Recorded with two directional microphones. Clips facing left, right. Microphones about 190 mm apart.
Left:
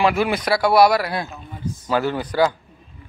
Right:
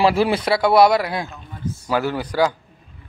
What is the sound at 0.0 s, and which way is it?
Speech, 30° right (ahead or behind).